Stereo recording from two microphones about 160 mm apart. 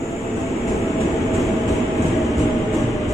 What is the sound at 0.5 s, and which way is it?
Train, centre (ahead or behind).